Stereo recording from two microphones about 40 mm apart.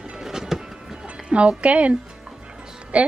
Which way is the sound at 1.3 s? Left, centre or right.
Right.